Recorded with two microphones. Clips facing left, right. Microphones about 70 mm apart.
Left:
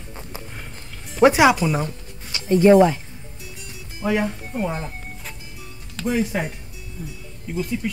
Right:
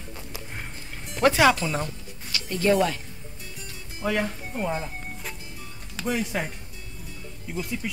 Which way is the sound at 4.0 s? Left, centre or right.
Centre.